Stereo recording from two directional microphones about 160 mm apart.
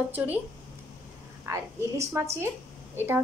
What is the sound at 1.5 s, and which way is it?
A woman's voice, 20° right (ahead or behind).